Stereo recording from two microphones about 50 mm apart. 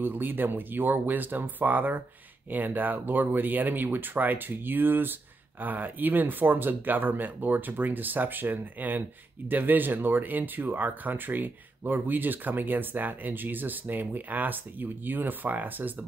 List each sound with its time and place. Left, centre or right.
0.0 s speech: right